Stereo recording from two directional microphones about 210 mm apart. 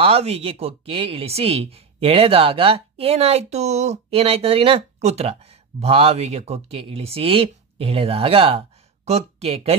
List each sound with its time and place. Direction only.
0.0 s speech: 30° right (ahead or behind)